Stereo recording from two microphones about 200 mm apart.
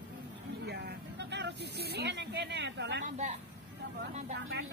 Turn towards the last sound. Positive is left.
turn(degrees=-60)  # may be behind; listen again after turning